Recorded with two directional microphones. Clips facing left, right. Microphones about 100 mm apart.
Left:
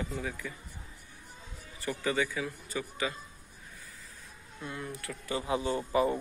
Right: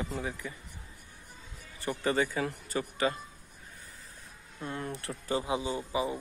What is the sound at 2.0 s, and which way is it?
Speech, 35° right (ahead or behind).